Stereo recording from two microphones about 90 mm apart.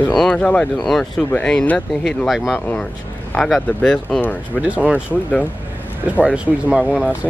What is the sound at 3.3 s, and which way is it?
Speech, 10° left (ahead or behind).